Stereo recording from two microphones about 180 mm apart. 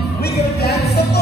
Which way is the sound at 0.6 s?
65° left (ahead or behind).